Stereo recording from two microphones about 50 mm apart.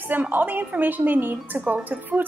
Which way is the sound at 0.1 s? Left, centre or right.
Right.